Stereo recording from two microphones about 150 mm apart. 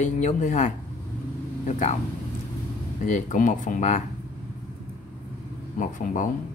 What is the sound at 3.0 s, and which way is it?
Speech, 60° left (ahead or behind).